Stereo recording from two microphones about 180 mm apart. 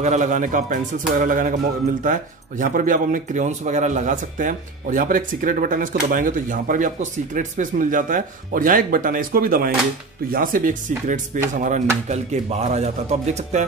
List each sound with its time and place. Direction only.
0.0 s a man's voice: 40° right (ahead or behind)
2.6 s a man's voice: 50° right (ahead or behind)